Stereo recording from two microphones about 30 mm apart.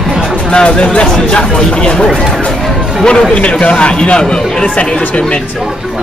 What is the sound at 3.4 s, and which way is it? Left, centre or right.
A man's voice, left.